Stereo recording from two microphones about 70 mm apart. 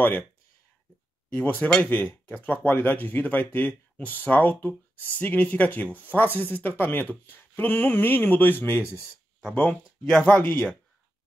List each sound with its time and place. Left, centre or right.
1.3 s speech: left
9.8 s speech: centre